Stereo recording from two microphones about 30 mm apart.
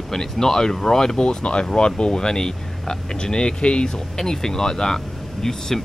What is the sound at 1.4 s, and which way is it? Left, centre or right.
Speech, left.